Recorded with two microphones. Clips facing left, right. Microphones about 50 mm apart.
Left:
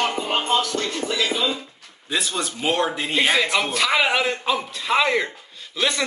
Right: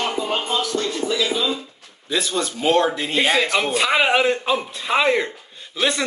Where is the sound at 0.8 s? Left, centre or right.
Left.